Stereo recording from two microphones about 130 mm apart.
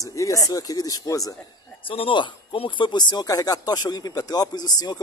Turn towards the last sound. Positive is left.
turn(degrees=30)  # may be behind; listen again after turning